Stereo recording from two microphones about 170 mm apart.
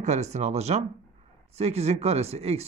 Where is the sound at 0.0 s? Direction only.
40° right (ahead or behind).